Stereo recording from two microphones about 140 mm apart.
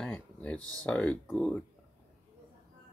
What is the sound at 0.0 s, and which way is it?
Speech, 10° left (ahead or behind).